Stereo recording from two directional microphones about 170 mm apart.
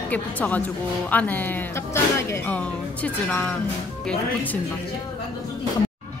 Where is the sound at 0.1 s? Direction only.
10° left (ahead or behind).